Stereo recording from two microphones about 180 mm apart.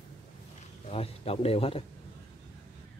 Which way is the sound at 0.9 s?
35° left (ahead or behind).